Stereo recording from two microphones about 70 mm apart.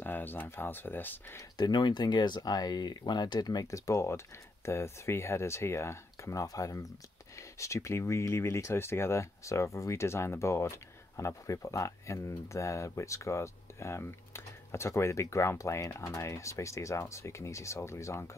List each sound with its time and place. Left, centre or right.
0.0 s speech: left
1.6 s speech: left